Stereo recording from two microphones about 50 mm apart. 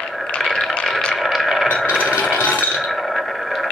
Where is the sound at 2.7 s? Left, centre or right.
Centre.